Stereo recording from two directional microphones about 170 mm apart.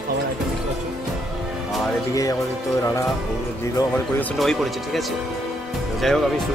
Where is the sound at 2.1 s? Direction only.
20° left (ahead or behind).